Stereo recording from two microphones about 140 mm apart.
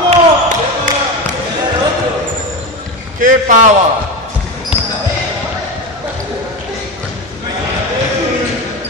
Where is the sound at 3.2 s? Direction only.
70° right (ahead or behind).